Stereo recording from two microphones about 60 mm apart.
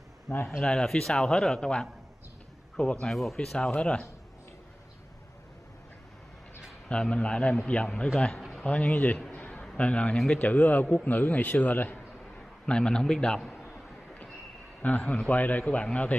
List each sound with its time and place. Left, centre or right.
0.3 s speech: left
0.6 s a man's voice: centre
3.1 s speech: centre
3.5 s a man's voice: centre
6.9 s a man's voice: centre
9.3 s a sound: left
9.6 s a man's voice: centre
12.4 s a man's voice: centre
14.8 s a man's voice: left